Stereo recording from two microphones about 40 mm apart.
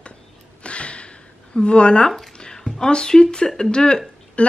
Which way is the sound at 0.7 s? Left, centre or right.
Left.